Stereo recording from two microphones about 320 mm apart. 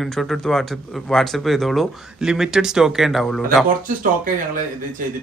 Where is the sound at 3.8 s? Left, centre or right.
Right.